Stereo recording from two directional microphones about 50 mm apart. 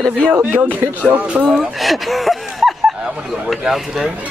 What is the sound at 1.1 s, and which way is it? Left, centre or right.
Speech, right.